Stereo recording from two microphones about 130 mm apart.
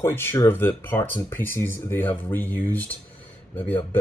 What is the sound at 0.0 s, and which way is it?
Speech, 20° left (ahead or behind).